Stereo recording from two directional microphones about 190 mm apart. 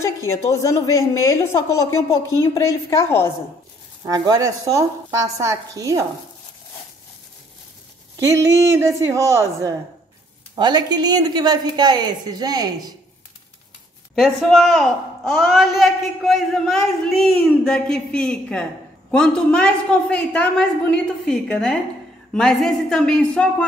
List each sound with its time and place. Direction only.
0.0 s a woman's voice: 15° left (ahead or behind)
4.0 s a woman's voice: 15° right (ahead or behind)
8.2 s a woman's voice: 15° right (ahead or behind)
14.1 s a man's voice: centre (ahead or behind)